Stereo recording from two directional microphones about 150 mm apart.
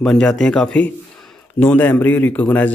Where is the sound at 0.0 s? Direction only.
5° left (ahead or behind).